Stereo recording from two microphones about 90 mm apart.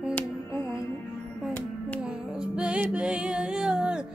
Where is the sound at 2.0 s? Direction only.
10° right (ahead or behind).